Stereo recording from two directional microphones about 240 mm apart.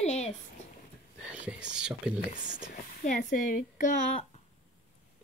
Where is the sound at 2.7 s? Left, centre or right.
Left.